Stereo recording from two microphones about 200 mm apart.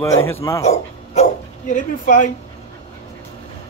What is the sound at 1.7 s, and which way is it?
Speech, 40° left (ahead or behind).